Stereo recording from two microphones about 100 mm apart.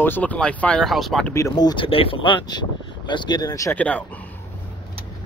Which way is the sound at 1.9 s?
65° left (ahead or behind).